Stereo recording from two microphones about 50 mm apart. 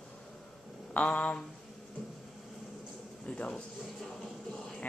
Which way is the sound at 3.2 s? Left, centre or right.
Left.